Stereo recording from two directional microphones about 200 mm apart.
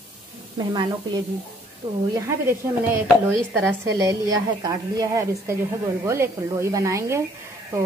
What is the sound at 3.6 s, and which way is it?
A woman's voice, 15° right (ahead or behind).